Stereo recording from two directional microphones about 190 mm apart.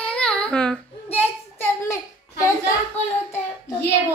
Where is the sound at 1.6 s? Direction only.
15° left (ahead or behind).